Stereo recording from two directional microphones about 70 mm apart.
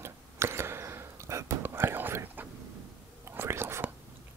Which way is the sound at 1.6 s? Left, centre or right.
Right.